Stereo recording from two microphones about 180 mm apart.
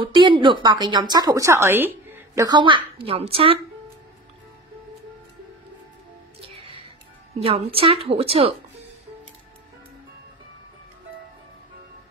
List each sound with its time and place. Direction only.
0.0 s a woman's voice: 25° right (ahead or behind)
6.4 s music: 30° right (ahead or behind)
7.3 s a woman's voice: 35° right (ahead or behind)